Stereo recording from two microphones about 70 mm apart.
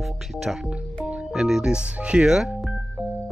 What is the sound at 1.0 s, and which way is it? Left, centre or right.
Speech, centre.